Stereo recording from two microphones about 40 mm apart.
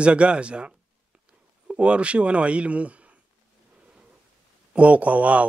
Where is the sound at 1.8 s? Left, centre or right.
Right.